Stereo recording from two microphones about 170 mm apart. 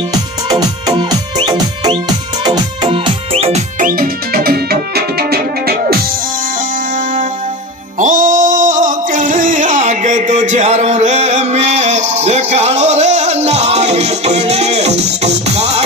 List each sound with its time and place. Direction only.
0.1 s music: 20° right (ahead or behind)
3.8 s music: 60° right (ahead or behind)
8.0 s music: 50° right (ahead or behind)